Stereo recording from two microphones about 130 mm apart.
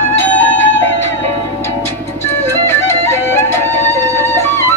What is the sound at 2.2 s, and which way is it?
Music, 15° left (ahead or behind).